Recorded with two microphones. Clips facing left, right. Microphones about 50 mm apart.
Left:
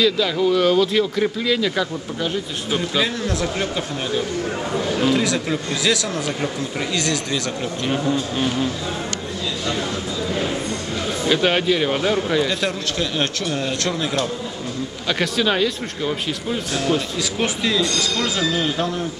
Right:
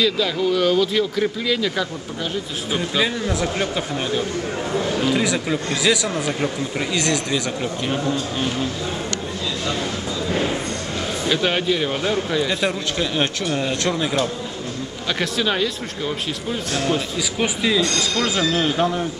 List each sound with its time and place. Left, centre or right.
0.0 s a man's voice: centre
7.9 s speech: centre
11.2 s speech: centre
12.4 s a man's voice: centre